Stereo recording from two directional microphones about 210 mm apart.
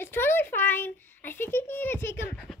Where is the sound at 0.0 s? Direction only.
10° left (ahead or behind).